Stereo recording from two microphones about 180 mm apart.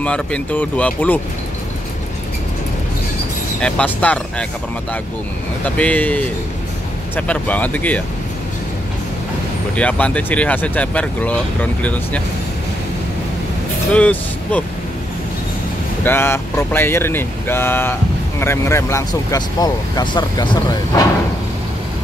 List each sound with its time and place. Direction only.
0.0 s speech: 5° left (ahead or behind)
3.6 s speech: 5° left (ahead or behind)
5.8 s speech: 5° left (ahead or behind)
9.8 s speech: 5° left (ahead or behind)
13.9 s speech: 5° left (ahead or behind)
16.0 s speech: 10° left (ahead or behind)